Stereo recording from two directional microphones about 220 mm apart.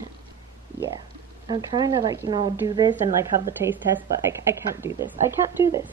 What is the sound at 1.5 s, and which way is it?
A woman's voice, 15° right (ahead or behind).